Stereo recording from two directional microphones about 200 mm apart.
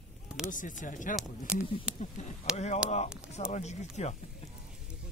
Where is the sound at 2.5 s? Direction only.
35° left (ahead or behind).